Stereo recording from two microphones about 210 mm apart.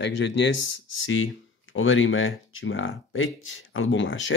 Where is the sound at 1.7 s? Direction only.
70° left (ahead or behind).